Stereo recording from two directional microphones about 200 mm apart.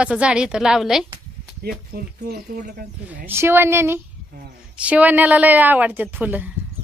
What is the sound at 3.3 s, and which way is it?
A woman's voice, 10° right (ahead or behind).